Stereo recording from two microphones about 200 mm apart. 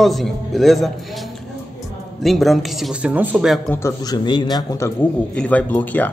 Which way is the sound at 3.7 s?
15° left (ahead or behind).